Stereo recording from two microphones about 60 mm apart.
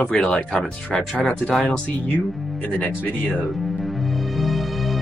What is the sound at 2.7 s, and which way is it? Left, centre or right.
Speech, left.